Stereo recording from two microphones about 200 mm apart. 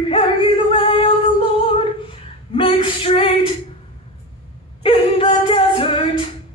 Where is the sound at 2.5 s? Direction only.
25° left (ahead or behind).